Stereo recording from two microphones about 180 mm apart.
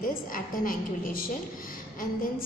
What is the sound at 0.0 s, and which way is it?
A woman's voice, 50° left (ahead or behind).